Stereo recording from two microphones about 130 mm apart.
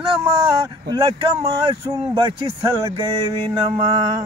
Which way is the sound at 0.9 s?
30° right (ahead or behind).